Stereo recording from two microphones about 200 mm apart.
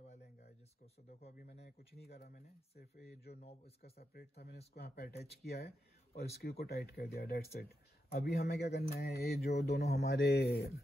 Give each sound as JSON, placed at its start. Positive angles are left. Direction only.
{"t": 1.2, "sound": "speech", "side_deg": 45}
{"t": 3.3, "sound": "a man's voice", "side_deg": 30}
{"t": 3.9, "sound": "speech", "side_deg": 50}